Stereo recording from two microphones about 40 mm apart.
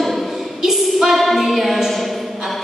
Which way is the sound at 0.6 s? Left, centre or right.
Centre.